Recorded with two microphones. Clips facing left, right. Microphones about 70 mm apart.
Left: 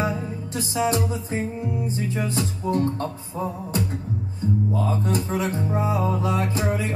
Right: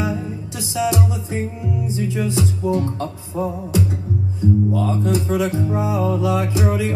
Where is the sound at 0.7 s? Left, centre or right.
Left.